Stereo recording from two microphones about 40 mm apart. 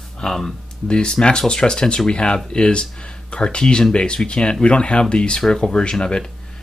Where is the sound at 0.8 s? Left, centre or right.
Left.